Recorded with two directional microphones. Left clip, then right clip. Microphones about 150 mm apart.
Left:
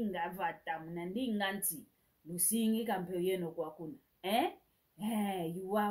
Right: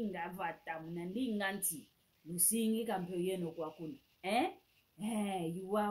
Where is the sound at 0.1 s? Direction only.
15° right (ahead or behind).